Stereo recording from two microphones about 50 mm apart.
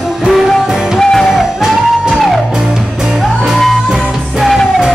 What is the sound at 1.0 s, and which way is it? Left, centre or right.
Music, centre.